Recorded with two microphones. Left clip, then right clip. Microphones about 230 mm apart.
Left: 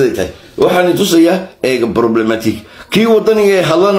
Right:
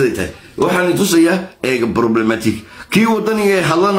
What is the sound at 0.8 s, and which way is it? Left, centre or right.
Speech, centre.